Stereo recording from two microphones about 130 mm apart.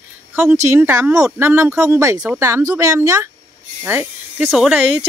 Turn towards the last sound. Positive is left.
turn(degrees=0)  # may be behind; listen again after turning